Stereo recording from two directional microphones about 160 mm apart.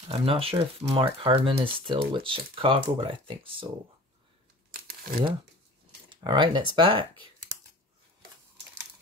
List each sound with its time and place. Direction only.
0.1 s speech: 35° right (ahead or behind)
4.6 s crumpling: 70° right (ahead or behind)
6.0 s speech: 30° right (ahead or behind)